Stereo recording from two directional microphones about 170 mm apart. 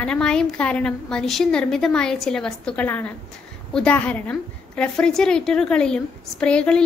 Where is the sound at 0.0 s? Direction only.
5° left (ahead or behind).